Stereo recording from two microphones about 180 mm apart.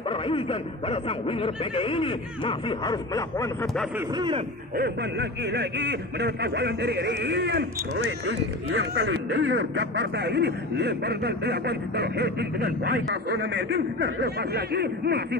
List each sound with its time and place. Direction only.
0.1 s speech: 30° left (ahead or behind)
4.7 s speech: 65° right (ahead or behind)
13.5 s speech: 80° right; by 15.2 s 65° right (ahead or behind)